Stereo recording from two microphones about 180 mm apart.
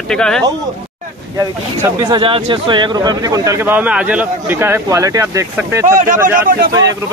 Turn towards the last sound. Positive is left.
turn(degrees=-50)  # may be behind; listen again after turning